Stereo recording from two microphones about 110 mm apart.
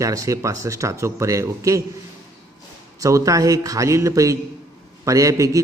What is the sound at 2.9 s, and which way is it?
A man's voice, 30° right (ahead or behind).